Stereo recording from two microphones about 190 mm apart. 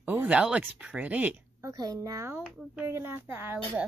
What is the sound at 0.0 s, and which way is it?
Speech, 10° right (ahead or behind).